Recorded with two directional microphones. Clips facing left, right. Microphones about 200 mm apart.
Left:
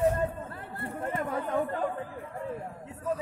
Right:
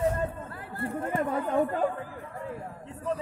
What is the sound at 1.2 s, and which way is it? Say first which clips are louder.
Speech: right 4 dB; 25° right (ahead or behind).